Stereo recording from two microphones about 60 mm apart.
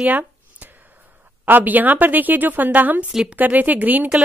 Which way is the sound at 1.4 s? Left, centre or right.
Right.